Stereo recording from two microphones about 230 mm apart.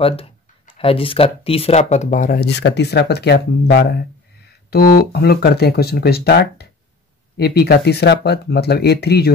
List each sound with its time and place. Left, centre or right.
0.0 s speech: left